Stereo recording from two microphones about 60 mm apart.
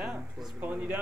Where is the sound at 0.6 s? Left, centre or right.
Right.